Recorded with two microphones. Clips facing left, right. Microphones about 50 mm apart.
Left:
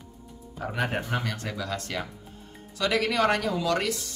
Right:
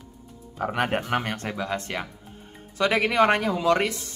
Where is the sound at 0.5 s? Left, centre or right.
Right.